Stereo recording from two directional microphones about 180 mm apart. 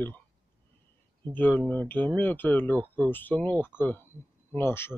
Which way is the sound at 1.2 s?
10° left (ahead or behind).